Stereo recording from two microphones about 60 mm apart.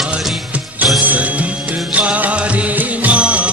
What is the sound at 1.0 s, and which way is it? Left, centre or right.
Music, right.